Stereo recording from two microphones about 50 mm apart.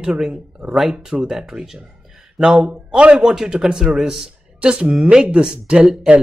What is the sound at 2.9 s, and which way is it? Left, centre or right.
A man's voice, centre.